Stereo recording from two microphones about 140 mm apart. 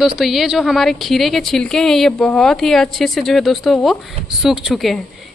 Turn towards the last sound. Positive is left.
turn(degrees=0)  # may be behind; listen again after turning